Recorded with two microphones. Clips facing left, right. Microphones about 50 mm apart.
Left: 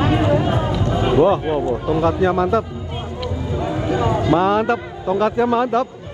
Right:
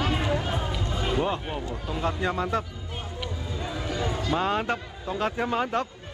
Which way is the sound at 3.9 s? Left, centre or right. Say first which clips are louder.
Left 11 dB; left.